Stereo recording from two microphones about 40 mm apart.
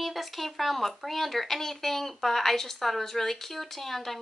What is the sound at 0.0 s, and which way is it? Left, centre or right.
Speech, centre.